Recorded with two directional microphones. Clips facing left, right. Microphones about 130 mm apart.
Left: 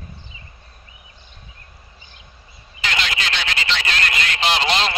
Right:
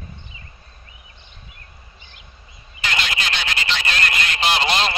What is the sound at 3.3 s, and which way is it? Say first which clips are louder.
Telephone: left 1 dB; 45° right (ahead or behind).